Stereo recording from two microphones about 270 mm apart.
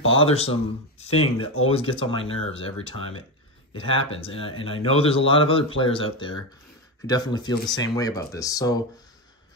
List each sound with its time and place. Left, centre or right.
0.0 s a man's voice: left
3.0 s speech: left
3.7 s a man's voice: centre